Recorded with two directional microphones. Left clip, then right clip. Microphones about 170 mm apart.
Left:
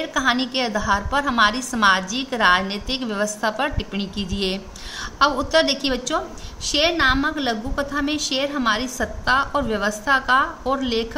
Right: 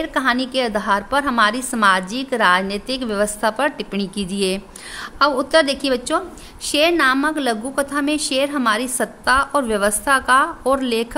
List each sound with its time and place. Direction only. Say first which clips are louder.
0.0 s a woman's voice: right 2 dB; 45° right (ahead or behind); by 11.1 s 60° right (ahead or behind)